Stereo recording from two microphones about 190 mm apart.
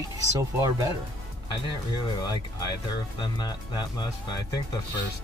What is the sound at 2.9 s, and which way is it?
Speech, 20° left (ahead or behind).